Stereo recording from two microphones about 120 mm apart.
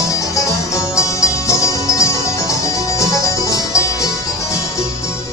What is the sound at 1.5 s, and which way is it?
Music, 25° left (ahead or behind).